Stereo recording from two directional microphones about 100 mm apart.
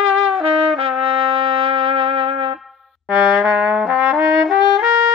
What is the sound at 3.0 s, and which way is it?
Brass instrument, 5° right (ahead or behind).